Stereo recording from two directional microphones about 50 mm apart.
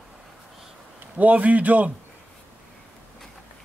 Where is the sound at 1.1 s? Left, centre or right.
Right.